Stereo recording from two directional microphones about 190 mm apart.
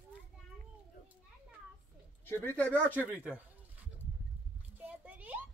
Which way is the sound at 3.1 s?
10° right (ahead or behind).